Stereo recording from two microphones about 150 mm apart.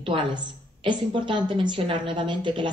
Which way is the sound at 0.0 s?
35° right (ahead or behind).